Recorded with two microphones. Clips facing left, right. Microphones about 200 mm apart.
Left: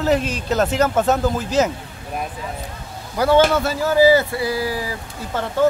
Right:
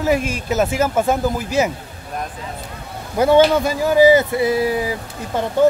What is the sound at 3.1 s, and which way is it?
Speech, 20° right (ahead or behind).